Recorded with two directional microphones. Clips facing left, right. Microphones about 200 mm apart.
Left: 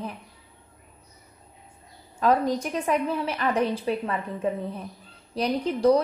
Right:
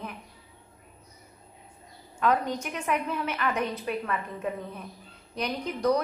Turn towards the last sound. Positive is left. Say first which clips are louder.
# left 5 dB
turn(degrees=30)  # may be behind; listen again after turning